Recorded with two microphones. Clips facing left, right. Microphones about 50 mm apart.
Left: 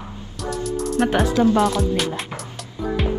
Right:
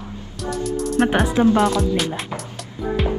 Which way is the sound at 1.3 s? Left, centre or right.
Right.